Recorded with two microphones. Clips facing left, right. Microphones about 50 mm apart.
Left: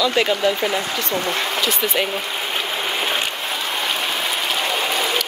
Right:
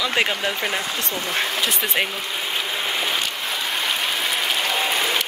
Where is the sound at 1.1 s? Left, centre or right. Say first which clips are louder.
Left 3 dB; left.